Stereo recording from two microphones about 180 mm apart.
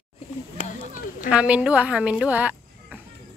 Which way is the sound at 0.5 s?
45° left (ahead or behind).